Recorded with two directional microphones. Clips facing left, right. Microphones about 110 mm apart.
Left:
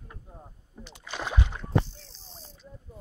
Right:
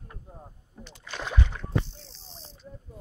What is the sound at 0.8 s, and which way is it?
Rowboat, 10° left (ahead or behind).